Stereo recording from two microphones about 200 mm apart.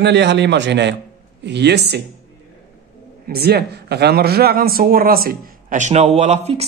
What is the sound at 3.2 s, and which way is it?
A man's voice, 50° right (ahead or behind).